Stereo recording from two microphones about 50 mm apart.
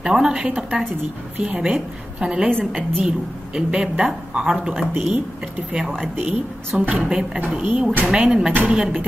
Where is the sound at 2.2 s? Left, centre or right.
Centre.